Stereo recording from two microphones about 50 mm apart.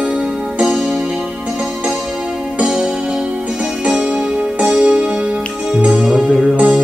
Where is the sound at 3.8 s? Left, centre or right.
Right.